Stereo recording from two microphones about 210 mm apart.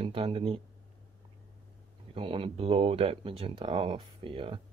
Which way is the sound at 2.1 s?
25° right (ahead or behind).